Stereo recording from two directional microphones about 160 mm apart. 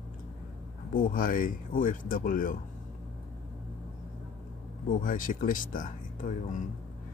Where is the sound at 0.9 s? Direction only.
60° left (ahead or behind).